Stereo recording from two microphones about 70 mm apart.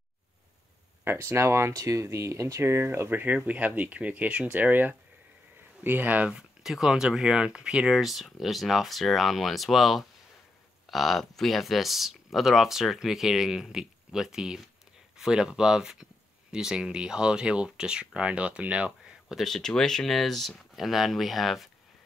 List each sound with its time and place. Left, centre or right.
1.0 s speech: right
1.8 s speech: right
6.3 s speech: centre
19.3 s speech: centre